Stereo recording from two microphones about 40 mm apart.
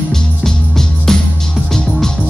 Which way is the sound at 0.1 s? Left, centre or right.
Centre.